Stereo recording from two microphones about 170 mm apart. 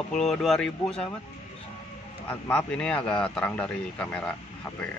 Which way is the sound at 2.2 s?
10° left (ahead or behind).